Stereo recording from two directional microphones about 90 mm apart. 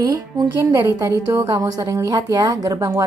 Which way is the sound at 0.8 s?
40° right (ahead or behind).